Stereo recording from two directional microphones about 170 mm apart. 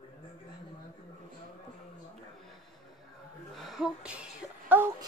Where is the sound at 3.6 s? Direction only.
Centre (ahead or behind).